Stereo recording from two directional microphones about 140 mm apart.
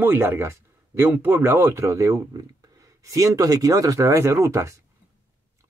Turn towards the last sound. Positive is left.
turn(degrees=-20)  # may be behind; listen again after turning